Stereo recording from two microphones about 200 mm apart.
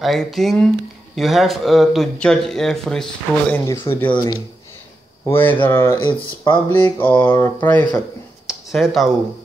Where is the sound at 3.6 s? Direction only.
15° left (ahead or behind).